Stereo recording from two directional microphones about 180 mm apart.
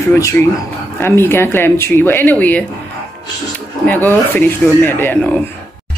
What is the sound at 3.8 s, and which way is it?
Speech, 10° left (ahead or behind).